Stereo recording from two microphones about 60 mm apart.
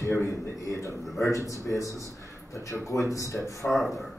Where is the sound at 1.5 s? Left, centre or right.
Left.